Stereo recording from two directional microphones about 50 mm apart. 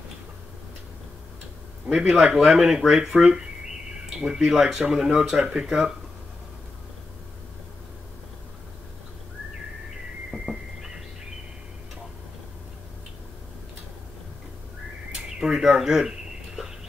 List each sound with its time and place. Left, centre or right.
1.9 s a man's voice: right
2.4 s speech: centre
10.3 s a sound: centre
15.1 s bird: centre